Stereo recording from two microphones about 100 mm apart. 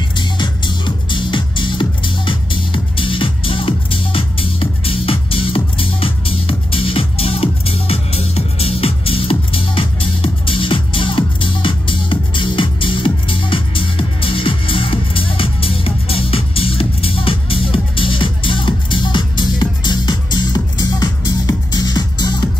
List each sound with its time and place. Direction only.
0.2 s music: 50° left (ahead or behind)